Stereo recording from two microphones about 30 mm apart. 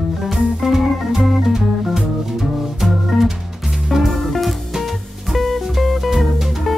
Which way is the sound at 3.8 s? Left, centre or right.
Centre.